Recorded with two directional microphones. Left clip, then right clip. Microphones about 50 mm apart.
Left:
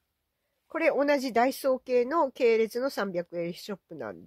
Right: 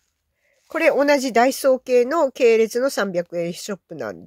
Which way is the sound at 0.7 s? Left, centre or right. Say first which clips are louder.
Right 8 dB; right.